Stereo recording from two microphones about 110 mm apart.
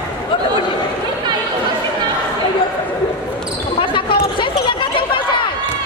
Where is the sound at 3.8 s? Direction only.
50° left (ahead or behind).